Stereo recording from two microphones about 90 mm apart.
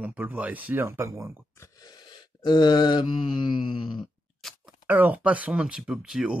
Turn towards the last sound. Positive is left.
turn(degrees=-5)  # may be behind; listen again after turning